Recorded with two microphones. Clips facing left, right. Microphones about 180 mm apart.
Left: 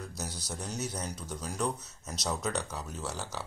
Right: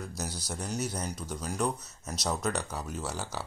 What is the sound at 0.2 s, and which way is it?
Speech, 5° right (ahead or behind).